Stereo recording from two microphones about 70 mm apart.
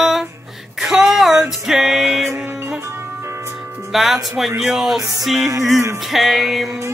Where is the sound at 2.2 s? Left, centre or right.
Right.